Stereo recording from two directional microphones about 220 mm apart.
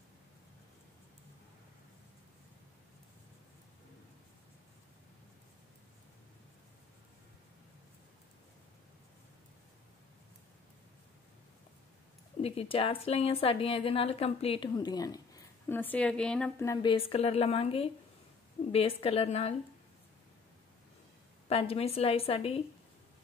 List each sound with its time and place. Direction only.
12.4 s a woman's voice: 25° left (ahead or behind)
21.5 s a woman's voice: 25° left (ahead or behind)